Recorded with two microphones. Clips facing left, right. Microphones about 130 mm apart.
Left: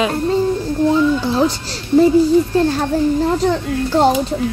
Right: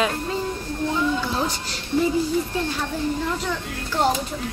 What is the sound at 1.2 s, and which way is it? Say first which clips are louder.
Speech: left 9 dB; 30° left (ahead or behind).